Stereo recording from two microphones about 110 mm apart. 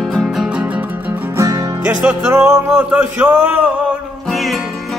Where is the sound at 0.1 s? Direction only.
5° right (ahead or behind).